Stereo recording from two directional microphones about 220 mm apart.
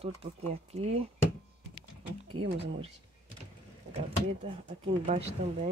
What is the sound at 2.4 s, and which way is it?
Speech, 25° right (ahead or behind).